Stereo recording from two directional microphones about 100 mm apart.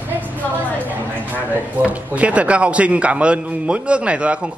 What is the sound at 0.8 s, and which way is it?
Speech, 15° right (ahead or behind).